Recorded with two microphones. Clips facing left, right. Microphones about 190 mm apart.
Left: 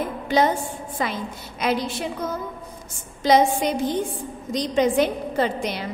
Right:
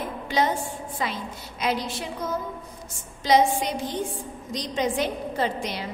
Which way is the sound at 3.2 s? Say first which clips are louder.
Left 2 dB; 50° left (ahead or behind).